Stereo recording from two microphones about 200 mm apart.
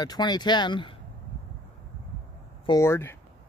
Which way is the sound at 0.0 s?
20° left (ahead or behind).